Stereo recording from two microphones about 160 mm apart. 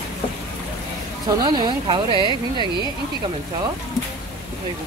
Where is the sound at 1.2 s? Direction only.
25° right (ahead or behind).